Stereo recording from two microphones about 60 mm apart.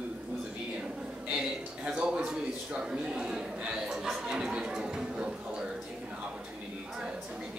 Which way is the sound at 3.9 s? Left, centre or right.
Centre.